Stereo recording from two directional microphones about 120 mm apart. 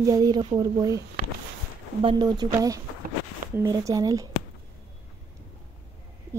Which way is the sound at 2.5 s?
30° right (ahead or behind).